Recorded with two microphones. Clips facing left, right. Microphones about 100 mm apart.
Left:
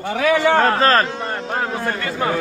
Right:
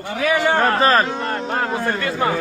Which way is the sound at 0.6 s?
15° right (ahead or behind).